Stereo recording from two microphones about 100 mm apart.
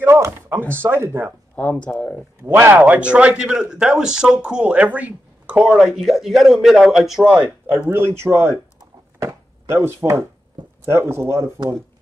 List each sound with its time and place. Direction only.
0.0 s chopping: 25° right (ahead or behind)
0.7 s speech: 25° right (ahead or behind)
1.6 s speech: 15° left (ahead or behind)
2.4 s a man's voice: 25° right (ahead or behind); by 7.4 s 10° right (ahead or behind)
7.9 s speech: 25° right (ahead or behind)